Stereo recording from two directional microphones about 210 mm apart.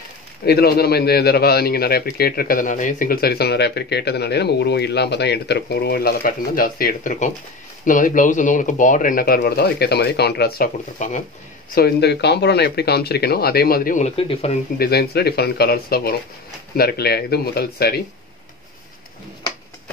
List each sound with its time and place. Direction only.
0.5 s a man's voice: 50° left (ahead or behind)
11.0 s speech: 35° left (ahead or behind)
11.7 s a man's voice: 50° left (ahead or behind); by 14.6 s 25° left (ahead or behind)
14.8 s a man's voice: 50° left (ahead or behind)